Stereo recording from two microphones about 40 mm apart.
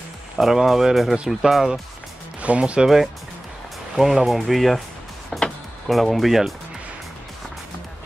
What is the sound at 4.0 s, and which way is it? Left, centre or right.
Speech, centre.